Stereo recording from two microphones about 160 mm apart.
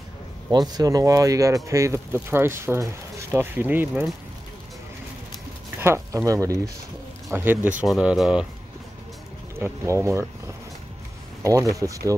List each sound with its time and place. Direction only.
0.5 s speech: 25° right (ahead or behind)
5.8 s speech: 15° right (ahead or behind)
7.8 s speech: 5° right (ahead or behind)
9.6 s speech: 15° right (ahead or behind)
11.4 s speech: 20° right (ahead or behind)